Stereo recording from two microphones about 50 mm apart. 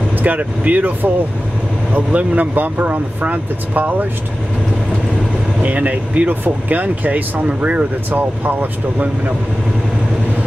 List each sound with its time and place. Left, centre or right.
0.2 s speech: right
5.6 s speech: right